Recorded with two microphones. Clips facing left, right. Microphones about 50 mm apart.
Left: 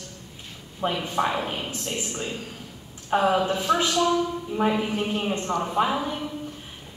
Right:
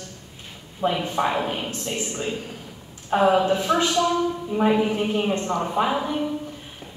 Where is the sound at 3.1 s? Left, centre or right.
Centre.